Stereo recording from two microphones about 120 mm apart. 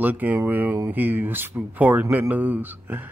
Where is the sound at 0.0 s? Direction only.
15° right (ahead or behind).